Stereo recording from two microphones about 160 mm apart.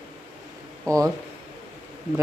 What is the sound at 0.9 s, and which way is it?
Speech, 20° right (ahead or behind).